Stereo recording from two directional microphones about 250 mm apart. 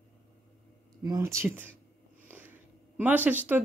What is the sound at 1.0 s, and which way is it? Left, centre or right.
Speech, centre.